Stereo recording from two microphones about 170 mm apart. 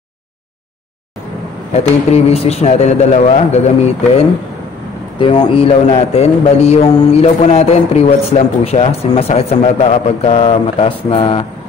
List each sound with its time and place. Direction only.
1.7 s a man's voice: 40° left (ahead or behind)